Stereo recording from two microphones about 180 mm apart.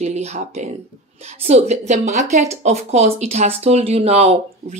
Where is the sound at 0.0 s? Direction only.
35° right (ahead or behind).